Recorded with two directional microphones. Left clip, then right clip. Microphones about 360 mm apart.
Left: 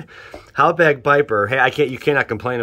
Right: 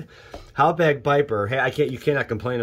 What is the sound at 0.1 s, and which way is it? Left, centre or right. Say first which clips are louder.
Speech: left 7 dB; centre.